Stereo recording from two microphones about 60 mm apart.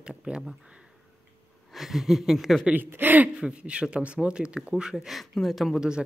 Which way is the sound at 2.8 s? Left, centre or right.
Right.